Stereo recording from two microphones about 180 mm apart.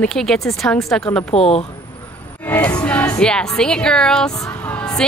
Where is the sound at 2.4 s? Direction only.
10° left (ahead or behind).